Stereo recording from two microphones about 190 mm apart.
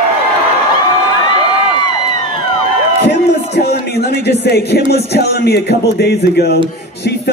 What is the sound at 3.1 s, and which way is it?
Music, 60° left (ahead or behind).